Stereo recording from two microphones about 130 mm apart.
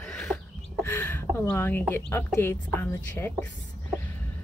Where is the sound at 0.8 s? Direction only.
20° left (ahead or behind).